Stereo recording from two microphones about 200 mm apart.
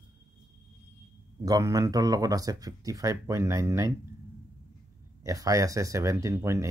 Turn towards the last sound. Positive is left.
turn(degrees=-15)  # may be behind; listen again after turning